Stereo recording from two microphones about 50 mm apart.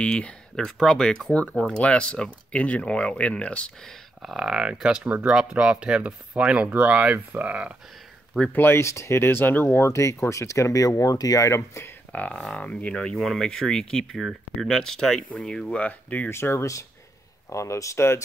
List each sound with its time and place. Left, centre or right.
0.0 s speech: centre
1.6 s speech: left
4.2 s speech: centre; by 7.7 s right
8.3 s speech: centre
8.7 s speech: left
10.3 s speech: left
12.1 s speech: left
13.1 s speech: centre
13.5 s speech: centre
15.8 s speech: left
16.3 s speech: left